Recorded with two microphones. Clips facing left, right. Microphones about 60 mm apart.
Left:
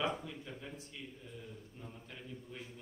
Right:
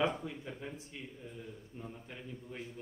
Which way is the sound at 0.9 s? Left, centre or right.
Right.